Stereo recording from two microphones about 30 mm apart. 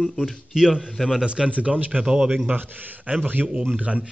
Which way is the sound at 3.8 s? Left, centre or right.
Right.